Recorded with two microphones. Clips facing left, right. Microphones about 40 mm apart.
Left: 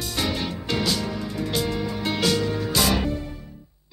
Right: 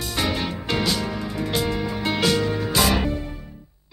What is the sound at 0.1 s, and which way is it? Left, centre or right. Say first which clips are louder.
Music: right 2 dB; right.